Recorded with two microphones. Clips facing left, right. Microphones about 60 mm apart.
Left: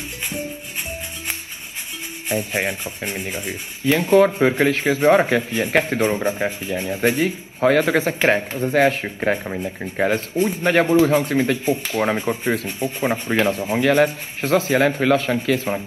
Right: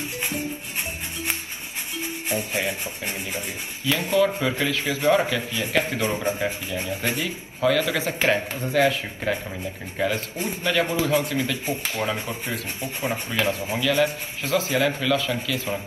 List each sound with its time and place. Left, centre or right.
2.2 s speech: left